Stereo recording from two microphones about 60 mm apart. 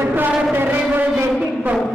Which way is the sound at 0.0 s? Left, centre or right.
Right.